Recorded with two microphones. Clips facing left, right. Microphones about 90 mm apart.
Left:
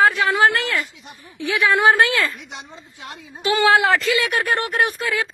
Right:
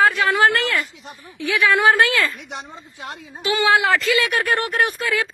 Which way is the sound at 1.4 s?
25° left (ahead or behind).